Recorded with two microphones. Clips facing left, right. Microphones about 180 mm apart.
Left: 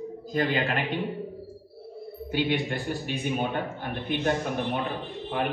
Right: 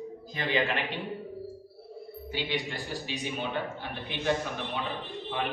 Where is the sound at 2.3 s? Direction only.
55° left (ahead or behind).